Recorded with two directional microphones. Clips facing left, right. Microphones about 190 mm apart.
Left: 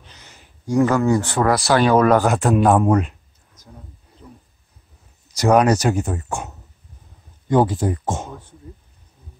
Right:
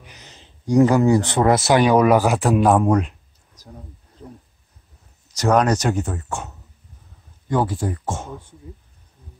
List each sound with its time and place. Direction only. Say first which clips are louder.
0.0 s speech: right 2 dB; 15° right (ahead or behind); by 3.2 s centre (ahead or behind)
4.2 s a sound: right 4 dB; 35° right (ahead or behind)
5.3 s speech: left 2 dB; 10° left (ahead or behind)